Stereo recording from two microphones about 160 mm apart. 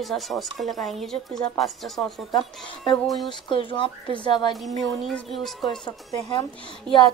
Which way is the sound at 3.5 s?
30° left (ahead or behind).